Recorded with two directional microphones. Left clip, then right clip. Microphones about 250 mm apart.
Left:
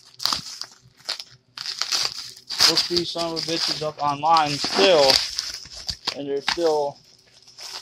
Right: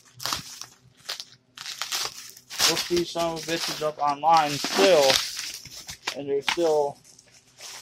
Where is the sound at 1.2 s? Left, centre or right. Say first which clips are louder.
Left 4 dB; left.